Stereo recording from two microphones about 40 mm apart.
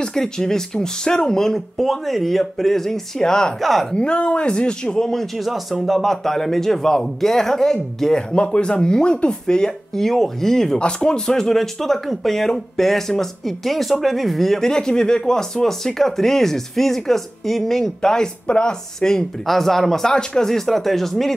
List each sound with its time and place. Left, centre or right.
0.0 s a man's voice: centre
3.6 s speech: centre
3.9 s speech: left
4.8 s a man's voice: centre
5.5 s a man's voice: centre
10.8 s a man's voice: left; by 14.6 s centre
14.6 s a man's voice: centre